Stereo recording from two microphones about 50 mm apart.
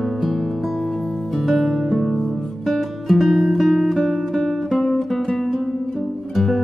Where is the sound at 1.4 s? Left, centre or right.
Centre.